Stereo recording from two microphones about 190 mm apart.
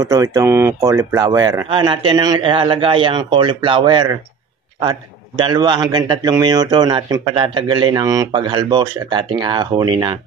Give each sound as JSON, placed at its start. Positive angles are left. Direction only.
{"t": 0.0, "sound": "a man's voice", "side_deg": -15}
{"t": 5.4, "sound": "a man's voice", "side_deg": -20}